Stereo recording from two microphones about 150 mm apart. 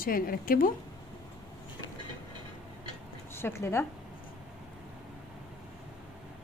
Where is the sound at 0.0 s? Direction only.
75° left (ahead or behind).